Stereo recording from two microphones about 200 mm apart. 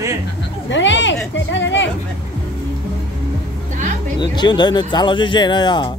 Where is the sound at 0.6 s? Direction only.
65° left (ahead or behind).